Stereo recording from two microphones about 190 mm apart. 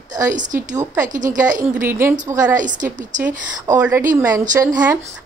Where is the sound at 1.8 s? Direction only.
10° right (ahead or behind).